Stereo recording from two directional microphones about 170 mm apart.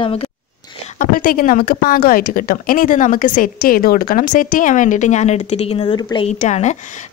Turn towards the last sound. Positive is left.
turn(degrees=40)  # may be behind; listen again after turning